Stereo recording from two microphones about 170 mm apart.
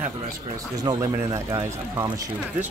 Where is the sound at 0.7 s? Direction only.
20° right (ahead or behind).